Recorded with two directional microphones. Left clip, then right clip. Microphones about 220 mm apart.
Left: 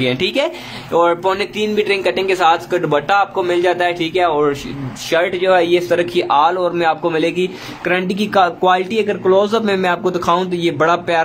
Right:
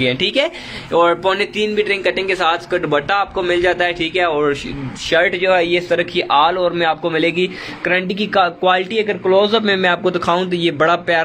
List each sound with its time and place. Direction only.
0.0 s speech: centre (ahead or behind)